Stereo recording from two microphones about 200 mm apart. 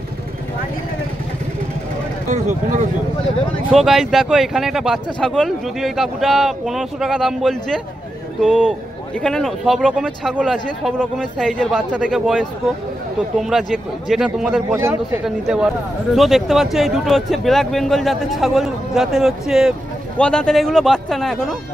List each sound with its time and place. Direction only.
2.2 s speech: 40° right (ahead or behind)
3.7 s speech: centre (ahead or behind)